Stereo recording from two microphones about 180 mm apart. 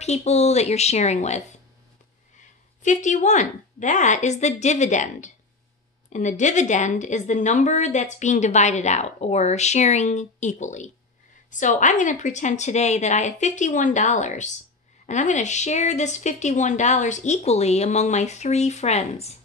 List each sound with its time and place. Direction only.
0.0 s a woman's voice: 40° left (ahead or behind)
2.8 s a woman's voice: 45° left (ahead or behind)